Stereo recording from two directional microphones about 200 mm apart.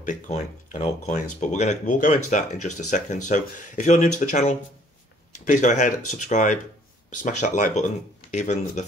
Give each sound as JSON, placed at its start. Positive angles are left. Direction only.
{"t": 0.0, "sound": "speech", "side_deg": 40}